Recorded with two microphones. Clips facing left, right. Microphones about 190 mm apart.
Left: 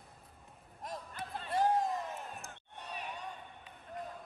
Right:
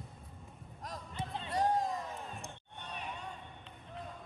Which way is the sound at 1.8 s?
Centre (ahead or behind).